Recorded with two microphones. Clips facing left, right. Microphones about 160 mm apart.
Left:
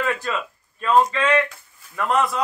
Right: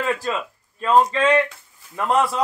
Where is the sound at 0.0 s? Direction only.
30° right (ahead or behind).